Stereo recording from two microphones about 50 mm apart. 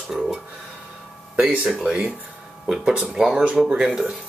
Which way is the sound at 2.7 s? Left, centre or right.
Centre.